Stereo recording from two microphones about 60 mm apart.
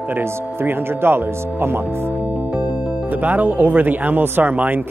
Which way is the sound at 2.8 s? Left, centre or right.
Right.